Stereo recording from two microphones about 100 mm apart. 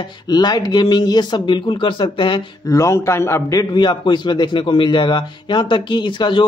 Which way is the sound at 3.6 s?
45° left (ahead or behind).